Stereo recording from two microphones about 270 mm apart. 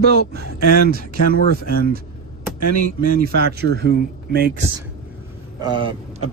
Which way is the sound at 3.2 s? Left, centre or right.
Right.